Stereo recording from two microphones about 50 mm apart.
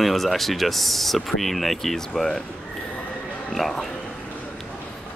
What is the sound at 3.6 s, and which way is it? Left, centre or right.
Speech, centre.